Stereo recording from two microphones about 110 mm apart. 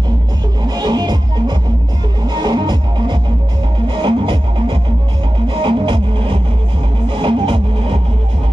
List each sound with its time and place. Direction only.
0.7 s music: 40° right (ahead or behind)